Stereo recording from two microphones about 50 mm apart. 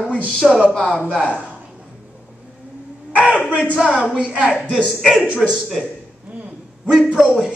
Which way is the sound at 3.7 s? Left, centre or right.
Centre.